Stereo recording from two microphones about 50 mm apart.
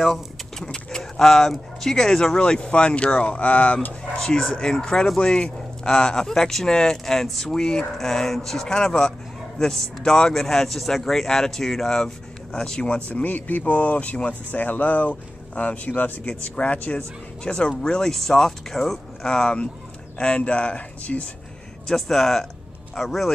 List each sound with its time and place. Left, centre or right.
0.0 s vehicle: centre
0.7 s speech: centre
4.2 s speech: centre
12.9 s speech: left
21.8 s speech: centre